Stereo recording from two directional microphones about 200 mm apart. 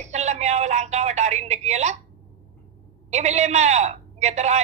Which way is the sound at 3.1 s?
35° right (ahead or behind).